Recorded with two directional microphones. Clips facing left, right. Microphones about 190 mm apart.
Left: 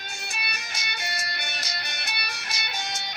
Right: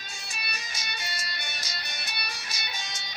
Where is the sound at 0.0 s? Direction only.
65° left (ahead or behind).